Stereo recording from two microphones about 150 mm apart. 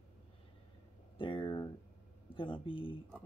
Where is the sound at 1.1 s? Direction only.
35° left (ahead or behind).